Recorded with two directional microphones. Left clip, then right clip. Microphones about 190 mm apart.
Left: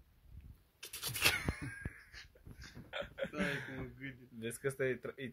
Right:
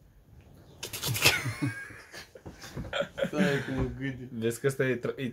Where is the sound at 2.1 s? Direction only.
20° right (ahead or behind).